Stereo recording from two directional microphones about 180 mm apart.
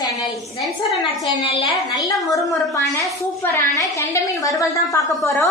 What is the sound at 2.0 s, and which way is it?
A woman's voice, 20° left (ahead or behind).